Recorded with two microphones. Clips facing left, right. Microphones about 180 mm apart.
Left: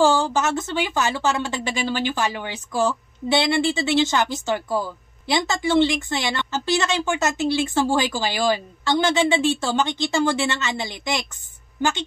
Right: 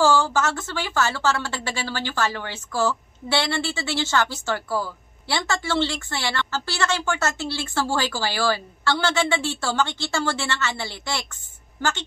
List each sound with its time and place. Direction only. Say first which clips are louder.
0.0 s a woman's voice: left 1 dB; 20° left (ahead or behind)